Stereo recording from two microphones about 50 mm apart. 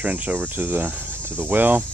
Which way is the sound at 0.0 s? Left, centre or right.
Right.